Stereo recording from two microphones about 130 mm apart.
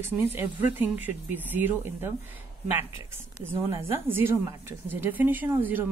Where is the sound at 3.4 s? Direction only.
20° right (ahead or behind).